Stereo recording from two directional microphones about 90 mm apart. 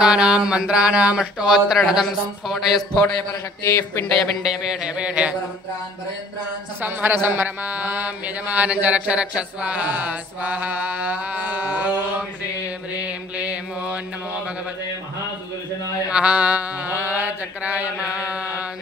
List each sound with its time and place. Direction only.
0.0 s mantra: 10° right (ahead or behind)
1.8 s speech: centre (ahead or behind)
3.6 s speech: 30° left (ahead or behind)
4.2 s mantra: centre (ahead or behind)
6.8 s mantra: 20° right (ahead or behind)
12.9 s mantra: 15° right (ahead or behind)
16.1 s mantra: 10° right (ahead or behind)